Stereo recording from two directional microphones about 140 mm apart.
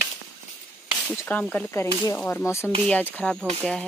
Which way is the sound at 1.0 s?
10° left (ahead or behind).